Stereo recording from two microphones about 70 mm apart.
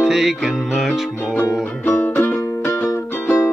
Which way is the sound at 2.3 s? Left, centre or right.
Left.